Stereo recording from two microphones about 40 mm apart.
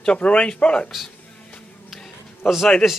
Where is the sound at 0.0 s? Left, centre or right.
Left.